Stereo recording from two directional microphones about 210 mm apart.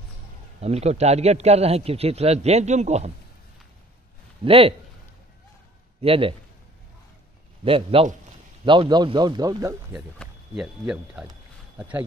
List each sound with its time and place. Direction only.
0.6 s speech: 30° right (ahead or behind)
4.5 s a man's voice: 25° right (ahead or behind)
5.9 s a man's voice: 25° right (ahead or behind)
7.6 s a man's voice: 25° right (ahead or behind)
9.9 s speech: centre (ahead or behind)